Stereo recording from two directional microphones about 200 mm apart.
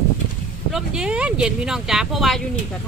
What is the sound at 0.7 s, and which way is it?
Speech, 5° right (ahead or behind).